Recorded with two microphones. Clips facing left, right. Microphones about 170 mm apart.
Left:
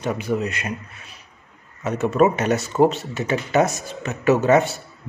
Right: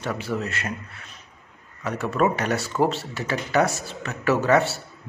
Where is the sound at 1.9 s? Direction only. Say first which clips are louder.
Left 5 dB; 20° left (ahead or behind).